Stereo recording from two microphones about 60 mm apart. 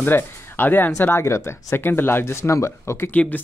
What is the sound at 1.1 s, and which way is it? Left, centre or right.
Speech, left.